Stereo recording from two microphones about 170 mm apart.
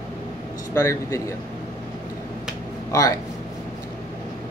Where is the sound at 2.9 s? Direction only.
20° left (ahead or behind).